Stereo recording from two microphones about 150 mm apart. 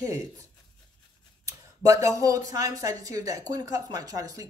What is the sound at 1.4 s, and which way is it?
Speech, 20° right (ahead or behind).